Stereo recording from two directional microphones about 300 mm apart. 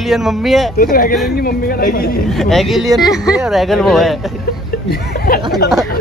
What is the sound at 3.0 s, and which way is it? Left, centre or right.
Speech, centre.